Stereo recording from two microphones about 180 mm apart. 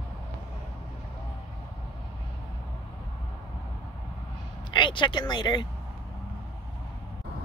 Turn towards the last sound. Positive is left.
turn(degrees=25)  # may be behind; listen again after turning